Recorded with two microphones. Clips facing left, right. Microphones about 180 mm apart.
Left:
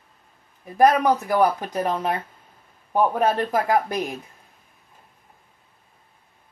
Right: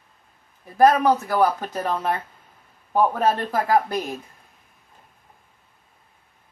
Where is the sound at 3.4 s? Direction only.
15° left (ahead or behind).